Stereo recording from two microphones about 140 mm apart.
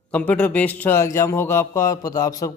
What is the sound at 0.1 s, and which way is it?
Speech, 10° left (ahead or behind).